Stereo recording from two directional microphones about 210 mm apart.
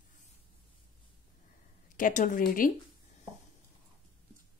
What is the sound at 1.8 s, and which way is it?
Speech, 40° left (ahead or behind).